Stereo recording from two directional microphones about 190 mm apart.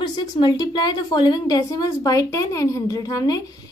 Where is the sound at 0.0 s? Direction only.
20° left (ahead or behind).